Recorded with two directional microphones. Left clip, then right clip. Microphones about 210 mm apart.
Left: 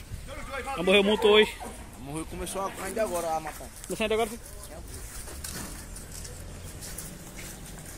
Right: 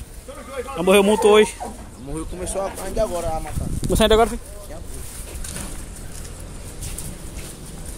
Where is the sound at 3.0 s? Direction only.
15° left (ahead or behind).